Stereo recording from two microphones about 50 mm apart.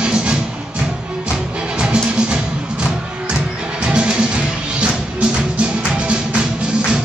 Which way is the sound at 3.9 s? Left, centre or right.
Centre.